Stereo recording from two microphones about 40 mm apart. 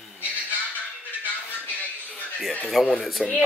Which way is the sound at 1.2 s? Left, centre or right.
Left.